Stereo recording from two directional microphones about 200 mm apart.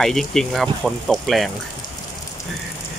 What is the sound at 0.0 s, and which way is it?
Speech, centre (ahead or behind).